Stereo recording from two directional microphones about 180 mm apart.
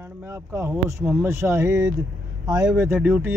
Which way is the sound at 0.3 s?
15° right (ahead or behind).